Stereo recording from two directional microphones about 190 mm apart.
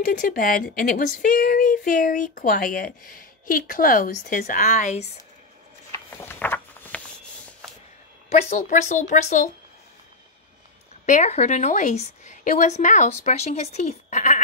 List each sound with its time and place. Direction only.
0.0 s speech: 45° left (ahead or behind)
5.9 s a sound: 10° left (ahead or behind)
8.3 s a woman's voice: 35° left (ahead or behind)
11.1 s a woman's voice: 35° left (ahead or behind)